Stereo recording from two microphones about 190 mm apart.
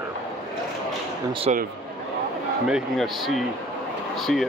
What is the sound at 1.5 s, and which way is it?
Speech, 35° right (ahead or behind).